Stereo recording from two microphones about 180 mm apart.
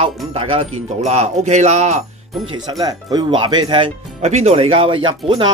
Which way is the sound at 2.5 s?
20° right (ahead or behind).